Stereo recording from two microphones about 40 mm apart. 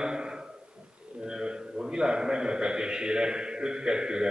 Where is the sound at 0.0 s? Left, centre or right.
Right.